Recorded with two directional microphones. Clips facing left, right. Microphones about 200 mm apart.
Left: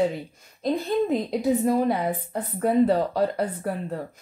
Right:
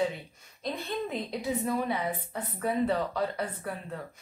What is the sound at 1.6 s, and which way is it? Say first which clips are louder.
Speech: left 8 dB; 35° left (ahead or behind).